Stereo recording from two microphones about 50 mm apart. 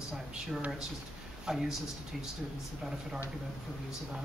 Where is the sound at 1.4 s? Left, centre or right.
Centre.